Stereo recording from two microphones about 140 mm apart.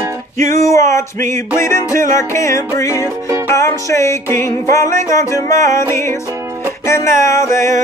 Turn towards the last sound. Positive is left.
turn(degrees=20)  # may be behind; listen again after turning